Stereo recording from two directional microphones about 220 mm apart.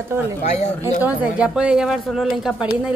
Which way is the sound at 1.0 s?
5° right (ahead or behind).